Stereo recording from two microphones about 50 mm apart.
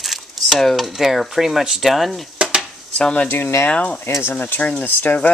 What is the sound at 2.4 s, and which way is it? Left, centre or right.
Dishes, right.